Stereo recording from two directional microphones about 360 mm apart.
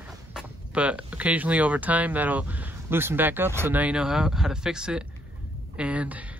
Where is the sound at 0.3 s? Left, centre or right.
Centre.